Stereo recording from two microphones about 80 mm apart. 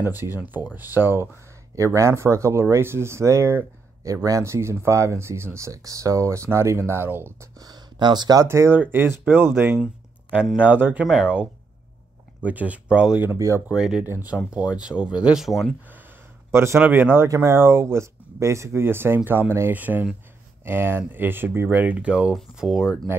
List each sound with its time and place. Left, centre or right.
0.4 s speech: right
1.8 s speech: right
4.1 s speech: right
7.5 s speech: right
8.5 s speech: right
10.3 s speech: centre
10.6 s speech: right
12.4 s speech: centre
14.0 s speech: right
14.7 s speech: centre
15.4 s speech: centre
16.5 s speech: right; by 22.8 s centre